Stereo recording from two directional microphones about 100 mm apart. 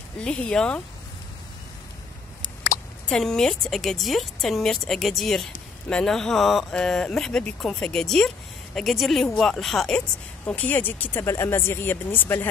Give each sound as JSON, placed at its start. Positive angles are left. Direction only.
{"t": 0.2, "sound": "speech", "side_deg": 10}
{"t": 3.1, "sound": "speech", "side_deg": 5}